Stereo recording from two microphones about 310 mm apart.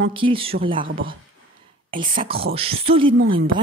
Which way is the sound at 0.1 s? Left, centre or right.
Centre.